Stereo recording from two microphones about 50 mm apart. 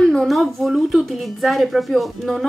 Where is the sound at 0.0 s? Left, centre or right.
Centre.